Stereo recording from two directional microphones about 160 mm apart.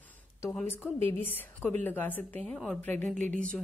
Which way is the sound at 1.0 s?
15° left (ahead or behind).